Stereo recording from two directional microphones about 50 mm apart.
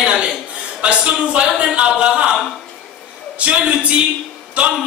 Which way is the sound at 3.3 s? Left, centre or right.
Right.